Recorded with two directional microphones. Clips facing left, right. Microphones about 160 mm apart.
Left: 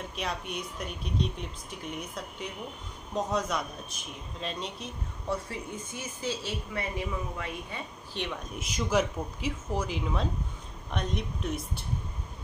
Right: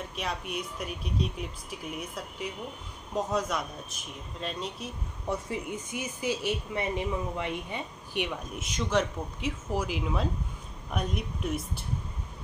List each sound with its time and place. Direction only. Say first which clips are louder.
0.1 s speech: even; centre (ahead or behind)
5.3 s speech: right 2 dB; 15° right (ahead or behind)
8.5 s speech: left 1 dB; centre (ahead or behind)